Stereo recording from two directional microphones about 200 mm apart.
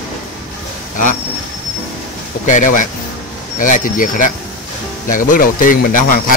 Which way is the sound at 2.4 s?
40° left (ahead or behind).